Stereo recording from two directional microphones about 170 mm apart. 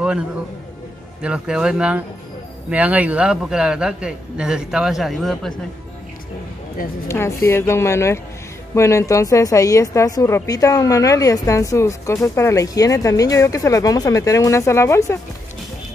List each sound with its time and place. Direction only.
1.2 s a man's voice: 5° right (ahead or behind)
7.1 s a woman's voice: 15° left (ahead or behind)